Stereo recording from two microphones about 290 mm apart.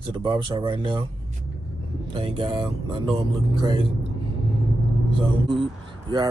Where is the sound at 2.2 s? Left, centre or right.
Centre.